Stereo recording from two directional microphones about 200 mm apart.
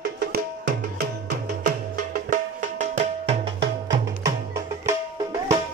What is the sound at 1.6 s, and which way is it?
Music, 40° right (ahead or behind).